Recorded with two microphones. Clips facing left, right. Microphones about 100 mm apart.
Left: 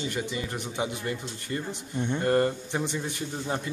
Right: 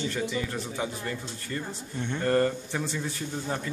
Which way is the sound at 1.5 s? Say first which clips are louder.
Left 3 dB; 25° left (ahead or behind).